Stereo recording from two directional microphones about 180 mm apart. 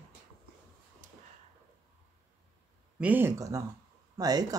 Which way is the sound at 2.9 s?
10° right (ahead or behind).